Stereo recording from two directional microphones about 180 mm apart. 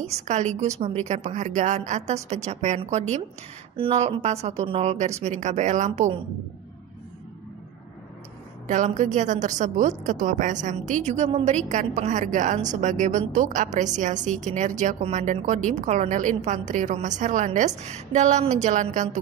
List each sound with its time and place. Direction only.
0.0 s a woman's voice: 40° right (ahead or behind)
8.6 s a woman's voice: 45° right (ahead or behind)